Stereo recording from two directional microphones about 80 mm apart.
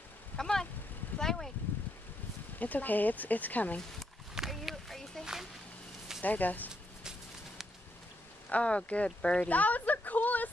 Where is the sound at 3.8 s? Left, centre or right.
Centre.